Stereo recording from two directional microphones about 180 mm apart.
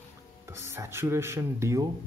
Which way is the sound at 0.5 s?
15° right (ahead or behind).